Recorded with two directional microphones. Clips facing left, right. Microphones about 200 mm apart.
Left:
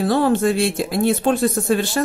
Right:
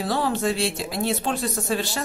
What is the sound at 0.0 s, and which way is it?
Speech, 55° left (ahead or behind).